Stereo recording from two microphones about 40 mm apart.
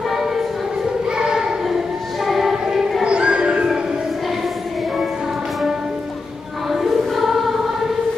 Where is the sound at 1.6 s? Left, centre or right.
Centre.